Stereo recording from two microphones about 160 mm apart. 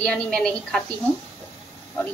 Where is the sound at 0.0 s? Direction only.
5° left (ahead or behind).